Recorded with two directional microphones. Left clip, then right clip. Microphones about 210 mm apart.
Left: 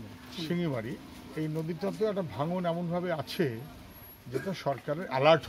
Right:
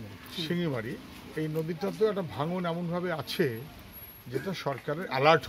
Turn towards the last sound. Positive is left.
turn(degrees=0)  # may be behind; listen again after turning